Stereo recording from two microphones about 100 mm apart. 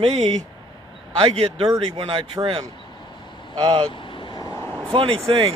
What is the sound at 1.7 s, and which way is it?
Speech, 55° right (ahead or behind).